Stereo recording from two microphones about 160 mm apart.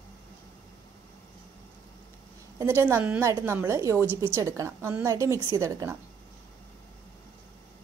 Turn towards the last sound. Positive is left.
turn(degrees=-20)  # may be behind; listen again after turning